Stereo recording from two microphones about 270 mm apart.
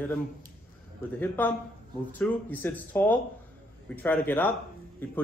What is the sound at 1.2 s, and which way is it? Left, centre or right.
A man's voice, centre.